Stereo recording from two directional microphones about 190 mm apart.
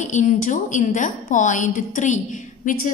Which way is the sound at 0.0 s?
40° left (ahead or behind).